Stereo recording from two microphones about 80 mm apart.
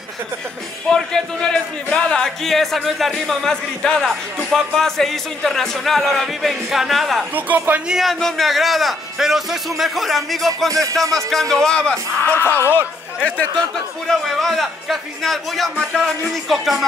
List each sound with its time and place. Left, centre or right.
0.8 s speech: centre
7.3 s speech: right
7.9 s speech: centre
10.7 s speech: right
11.1 s speech: centre
12.3 s speech: left
12.5 s speech: right
14.0 s speech: centre